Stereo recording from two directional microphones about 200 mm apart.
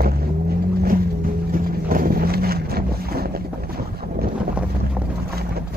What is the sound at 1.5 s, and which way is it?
Vehicle, 45° right (ahead or behind).